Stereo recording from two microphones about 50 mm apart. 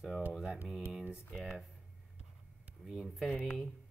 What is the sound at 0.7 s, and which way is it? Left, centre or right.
Speech, centre.